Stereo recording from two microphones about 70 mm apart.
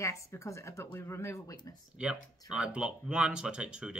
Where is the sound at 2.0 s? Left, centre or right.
Centre.